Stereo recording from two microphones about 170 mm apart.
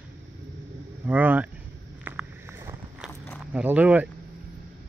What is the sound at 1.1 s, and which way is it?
Speech, 10° right (ahead or behind).